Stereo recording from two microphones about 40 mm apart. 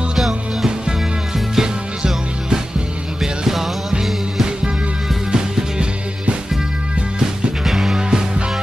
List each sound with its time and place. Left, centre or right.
1.5 s music: centre
5.3 s music: right
7.6 s music: centre
8.1 s music: right